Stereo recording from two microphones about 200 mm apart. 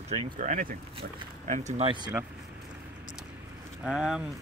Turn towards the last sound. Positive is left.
turn(degrees=-5)  # may be behind; listen again after turning